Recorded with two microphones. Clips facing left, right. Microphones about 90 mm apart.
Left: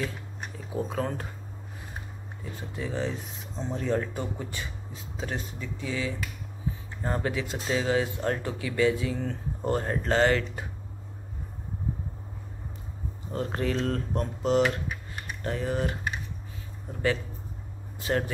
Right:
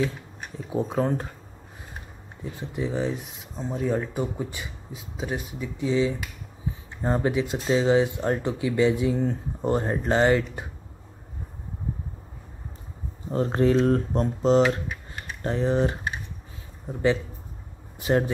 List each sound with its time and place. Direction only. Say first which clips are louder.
0.7 s speech: right 6 dB; 25° right (ahead or behind)
2.5 s speech: right 5 dB; 20° right (ahead or behind)
13.3 s speech: right 8 dB; 30° right (ahead or behind)
17.9 s speech: right 5 dB; 20° right (ahead or behind)